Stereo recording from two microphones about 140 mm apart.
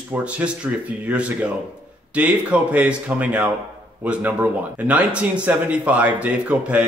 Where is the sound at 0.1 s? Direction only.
10° right (ahead or behind).